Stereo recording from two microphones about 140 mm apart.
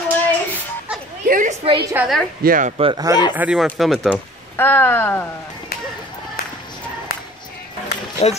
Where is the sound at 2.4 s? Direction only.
90° right.